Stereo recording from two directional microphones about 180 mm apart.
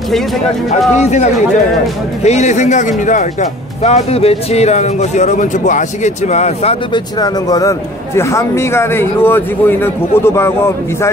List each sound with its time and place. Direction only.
0.7 s speech: 40° left (ahead or behind)
7.2 s speech: 20° left (ahead or behind)